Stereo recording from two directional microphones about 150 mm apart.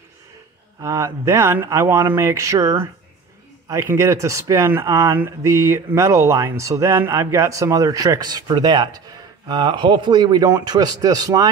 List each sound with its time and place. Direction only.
0.7 s speech: 20° right (ahead or behind)